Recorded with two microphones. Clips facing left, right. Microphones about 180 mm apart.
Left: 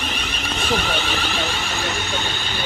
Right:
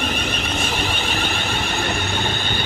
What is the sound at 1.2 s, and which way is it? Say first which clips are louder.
Vehicle: right 1 dB; 50° right (ahead or behind).